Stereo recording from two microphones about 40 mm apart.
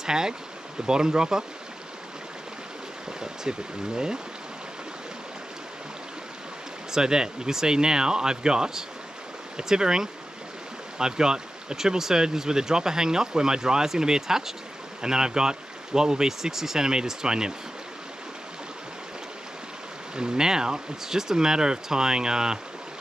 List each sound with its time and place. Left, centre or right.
0.0 s speech: centre
3.2 s speech: centre
6.9 s speech: centre
20.2 s speech: centre